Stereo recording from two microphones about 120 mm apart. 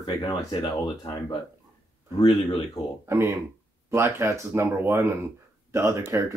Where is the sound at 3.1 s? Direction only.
25° right (ahead or behind).